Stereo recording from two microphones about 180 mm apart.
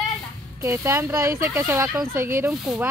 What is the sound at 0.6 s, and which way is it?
Speech, 15° right (ahead or behind).